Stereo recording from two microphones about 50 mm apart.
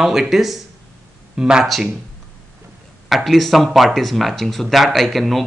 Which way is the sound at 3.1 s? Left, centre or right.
Centre.